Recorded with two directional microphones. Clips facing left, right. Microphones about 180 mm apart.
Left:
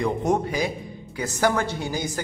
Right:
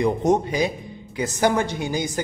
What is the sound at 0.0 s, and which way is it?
A man's voice, 20° right (ahead or behind).